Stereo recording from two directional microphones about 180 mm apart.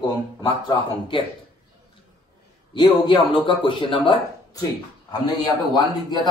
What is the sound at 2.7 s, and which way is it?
A man's voice, 25° left (ahead or behind).